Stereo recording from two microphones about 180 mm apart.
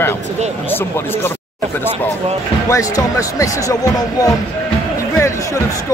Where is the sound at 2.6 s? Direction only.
20° left (ahead or behind).